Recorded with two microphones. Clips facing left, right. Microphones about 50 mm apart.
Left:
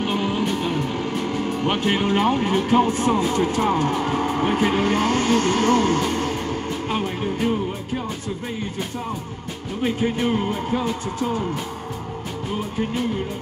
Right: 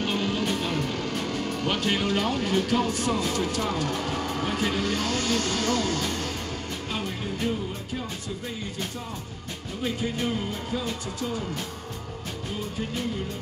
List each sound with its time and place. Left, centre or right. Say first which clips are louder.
0.0 s music: left 4 dB; centre
0.5 s speech: left 4 dB; centre; by 6.3 s left
6.9 s music: left 6 dB; left
9.8 s music: left 7 dB; left